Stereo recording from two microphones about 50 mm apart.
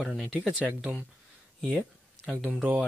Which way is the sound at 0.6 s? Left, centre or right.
Right.